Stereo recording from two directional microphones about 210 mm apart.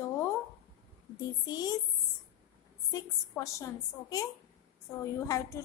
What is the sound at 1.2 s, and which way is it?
Speech, 20° left (ahead or behind).